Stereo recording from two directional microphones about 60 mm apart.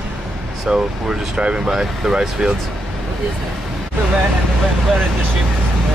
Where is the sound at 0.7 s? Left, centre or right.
Centre.